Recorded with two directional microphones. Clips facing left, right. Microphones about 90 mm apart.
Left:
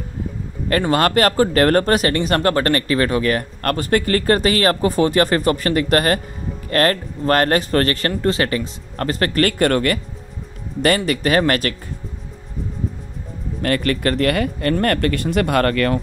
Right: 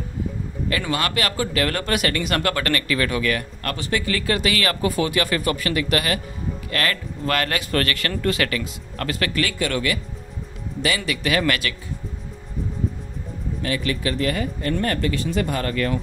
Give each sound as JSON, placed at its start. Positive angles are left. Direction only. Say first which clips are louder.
{"t": 0.7, "sound": "speech", "louder": "left 8 dB", "side_deg": 45}
{"t": 11.1, "sound": "speech", "louder": "left 5 dB", "side_deg": 40}
{"t": 13.6, "sound": "speech", "louder": "left 6 dB", "side_deg": 55}